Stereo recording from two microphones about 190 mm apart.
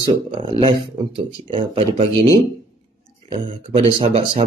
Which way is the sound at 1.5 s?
30° right (ahead or behind).